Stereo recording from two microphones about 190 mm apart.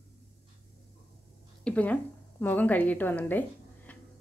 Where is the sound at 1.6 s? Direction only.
5° left (ahead or behind).